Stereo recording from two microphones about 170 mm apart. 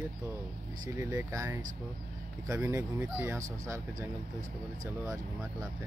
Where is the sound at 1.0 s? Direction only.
15° right (ahead or behind).